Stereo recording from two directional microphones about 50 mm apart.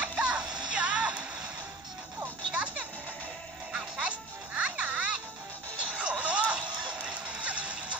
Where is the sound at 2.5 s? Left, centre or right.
Right.